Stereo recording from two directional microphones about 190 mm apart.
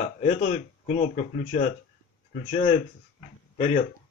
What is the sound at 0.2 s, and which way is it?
Speech, 40° left (ahead or behind).